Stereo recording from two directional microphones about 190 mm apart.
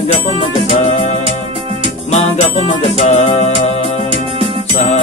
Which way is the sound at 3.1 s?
40° left (ahead or behind).